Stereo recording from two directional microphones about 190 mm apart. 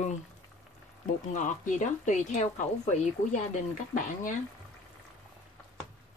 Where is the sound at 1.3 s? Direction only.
40° left (ahead or behind).